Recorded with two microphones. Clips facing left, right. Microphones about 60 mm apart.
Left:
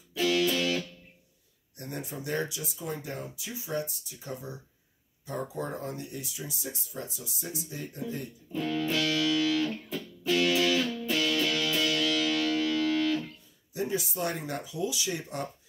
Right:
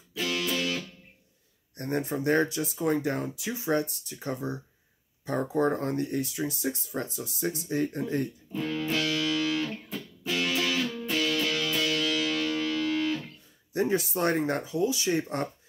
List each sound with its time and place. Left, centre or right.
0.2 s music: centre
1.8 s speech: right
8.5 s speech: centre
9.6 s music: centre
13.7 s speech: right